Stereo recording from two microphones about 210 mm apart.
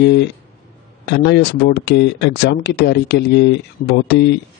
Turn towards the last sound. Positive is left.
turn(degrees=50)  # may be behind; listen again after turning